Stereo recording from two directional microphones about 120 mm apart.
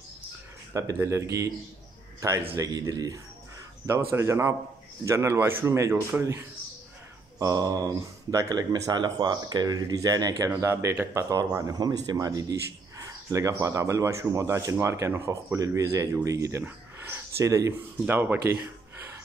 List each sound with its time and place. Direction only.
0.7 s a man's voice: 25° right (ahead or behind)